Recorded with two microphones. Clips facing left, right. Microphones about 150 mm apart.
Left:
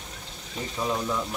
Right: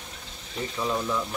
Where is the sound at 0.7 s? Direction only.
15° left (ahead or behind).